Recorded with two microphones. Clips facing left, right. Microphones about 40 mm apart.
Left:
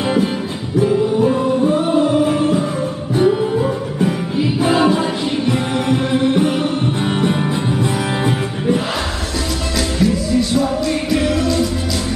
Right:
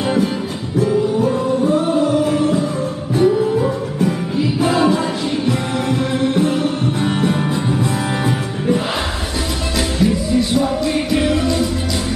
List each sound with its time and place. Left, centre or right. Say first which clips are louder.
0.7 s music: left 1 dB; centre
1.7 s music: left 1 dB; left
4.6 s music: left 1 dB; left
10.0 s music: even; centre